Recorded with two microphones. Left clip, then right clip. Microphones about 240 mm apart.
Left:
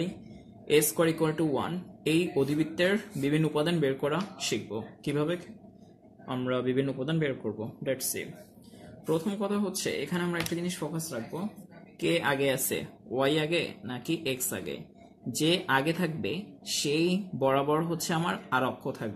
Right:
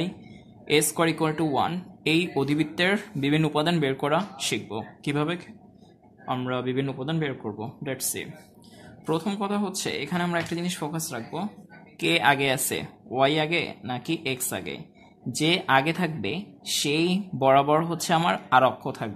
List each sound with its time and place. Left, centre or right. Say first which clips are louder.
0.7 s speech: right 2 dB; centre